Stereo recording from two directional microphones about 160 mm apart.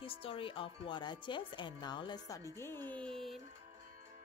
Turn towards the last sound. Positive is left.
turn(degrees=0)  # may be behind; listen again after turning